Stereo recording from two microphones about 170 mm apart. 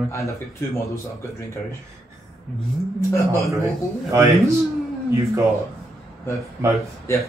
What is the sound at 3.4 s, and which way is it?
Speech, 15° right (ahead or behind).